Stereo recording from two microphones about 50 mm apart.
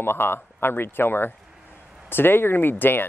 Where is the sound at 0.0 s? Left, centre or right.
Left.